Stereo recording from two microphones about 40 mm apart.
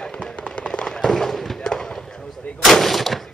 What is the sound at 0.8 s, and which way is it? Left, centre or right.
Fireworks, centre.